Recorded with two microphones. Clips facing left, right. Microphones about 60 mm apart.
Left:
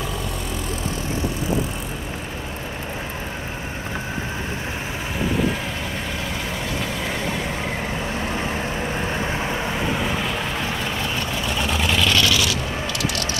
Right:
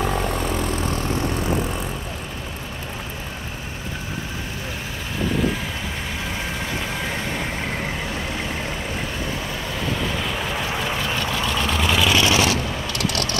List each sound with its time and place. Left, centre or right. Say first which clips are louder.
0.0 s vehicle: right 5 dB; right
9.5 s vehicle: left 4 dB; left
9.9 s vehicle: left 2 dB; centre
10.2 s vehicle: even; centre
11.7 s vehicle: right 1 dB; centre
12.1 s a sound: right 2 dB; right
12.4 s vehicle: right 3 dB; right